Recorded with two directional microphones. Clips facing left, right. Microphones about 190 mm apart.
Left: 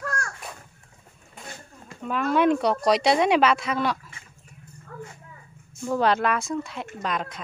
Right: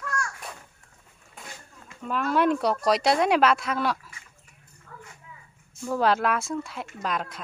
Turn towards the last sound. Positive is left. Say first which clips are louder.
# left 1 dB
turn(degrees=-5)  # may be behind; listen again after turning